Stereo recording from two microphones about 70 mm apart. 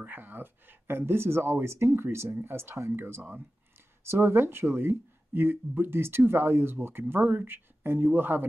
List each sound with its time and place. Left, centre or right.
0.0 s speech: right